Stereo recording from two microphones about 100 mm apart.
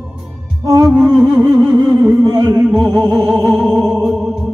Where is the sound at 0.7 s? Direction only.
35° right (ahead or behind).